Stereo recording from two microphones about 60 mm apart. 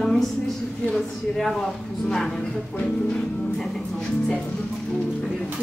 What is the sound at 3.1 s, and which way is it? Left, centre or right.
Speech, centre.